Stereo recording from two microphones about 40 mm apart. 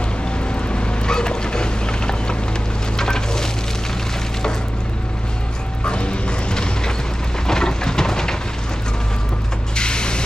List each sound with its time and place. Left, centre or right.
0.7 s vehicle: left
3.0 s a sound: centre
5.9 s music: left
7.4 s rain: centre
9.8 s vehicle: left